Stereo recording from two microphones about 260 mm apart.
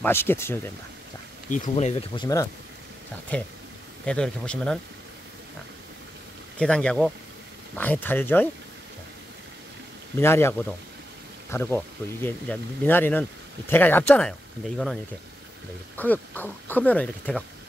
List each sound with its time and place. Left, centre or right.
0.0 s speech: centre
1.5 s speech: left; by 4.7 s centre
6.6 s speech: centre
10.1 s speech: centre
11.5 s speech: centre
16.0 s speech: centre